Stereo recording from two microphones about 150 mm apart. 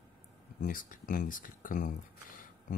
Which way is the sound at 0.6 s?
65° left (ahead or behind).